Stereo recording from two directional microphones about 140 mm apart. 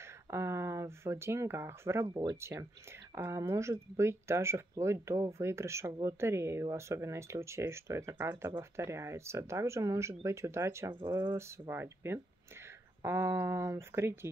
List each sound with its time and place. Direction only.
0.0 s speech: 20° right (ahead or behind)
11.0 s speech: 30° right (ahead or behind)
11.3 s speech: 20° right (ahead or behind)